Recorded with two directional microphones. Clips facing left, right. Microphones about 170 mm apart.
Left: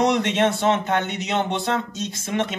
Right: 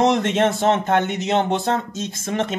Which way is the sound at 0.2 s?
45° right (ahead or behind).